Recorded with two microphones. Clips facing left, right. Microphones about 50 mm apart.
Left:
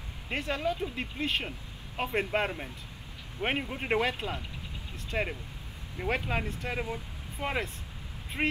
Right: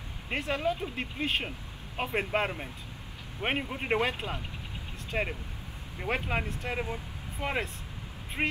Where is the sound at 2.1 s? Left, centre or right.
Centre.